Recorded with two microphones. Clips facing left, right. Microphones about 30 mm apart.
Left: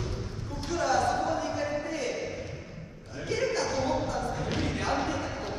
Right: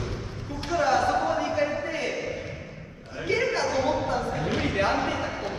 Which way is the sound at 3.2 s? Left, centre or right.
Right.